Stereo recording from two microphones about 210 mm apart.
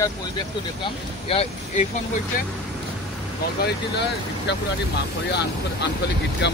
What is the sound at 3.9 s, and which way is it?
Speech, 55° left (ahead or behind).